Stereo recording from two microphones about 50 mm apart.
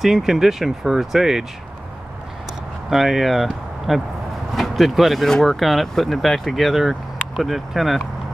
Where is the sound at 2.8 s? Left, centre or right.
Centre.